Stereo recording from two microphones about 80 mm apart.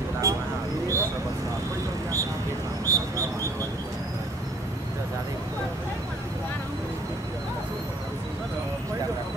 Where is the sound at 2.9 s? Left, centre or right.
Right.